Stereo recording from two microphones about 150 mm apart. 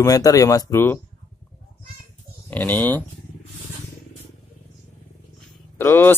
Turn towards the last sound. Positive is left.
turn(degrees=15)  # may be behind; listen again after turning